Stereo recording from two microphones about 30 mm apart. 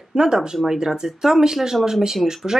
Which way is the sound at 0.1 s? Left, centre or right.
Right.